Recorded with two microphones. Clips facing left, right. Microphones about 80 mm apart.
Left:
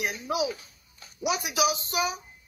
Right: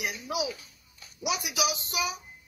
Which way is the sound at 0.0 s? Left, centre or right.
Left.